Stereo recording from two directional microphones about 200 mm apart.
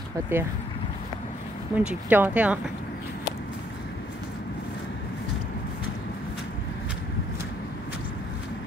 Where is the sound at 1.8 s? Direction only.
5° right (ahead or behind).